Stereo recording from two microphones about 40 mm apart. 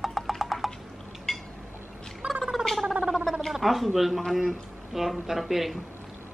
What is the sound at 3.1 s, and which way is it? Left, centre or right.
Gargling, centre.